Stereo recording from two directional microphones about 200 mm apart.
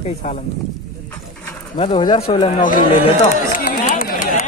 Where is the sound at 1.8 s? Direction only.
20° left (ahead or behind).